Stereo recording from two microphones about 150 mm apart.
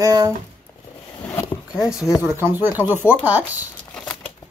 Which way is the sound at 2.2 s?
15° right (ahead or behind).